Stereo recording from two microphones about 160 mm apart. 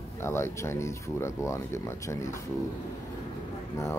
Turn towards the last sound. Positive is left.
turn(degrees=15)  # may be behind; listen again after turning